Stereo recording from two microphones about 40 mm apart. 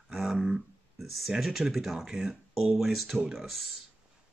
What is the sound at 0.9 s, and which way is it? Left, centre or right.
Speech, centre.